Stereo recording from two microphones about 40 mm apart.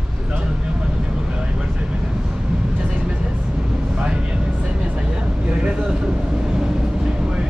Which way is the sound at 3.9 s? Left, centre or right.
Right.